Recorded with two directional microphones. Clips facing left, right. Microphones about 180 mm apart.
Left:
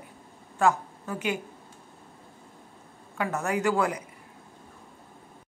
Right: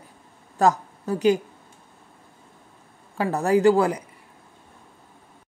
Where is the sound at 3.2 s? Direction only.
35° right (ahead or behind).